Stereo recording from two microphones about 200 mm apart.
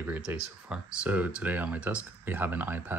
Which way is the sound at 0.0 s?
10° right (ahead or behind).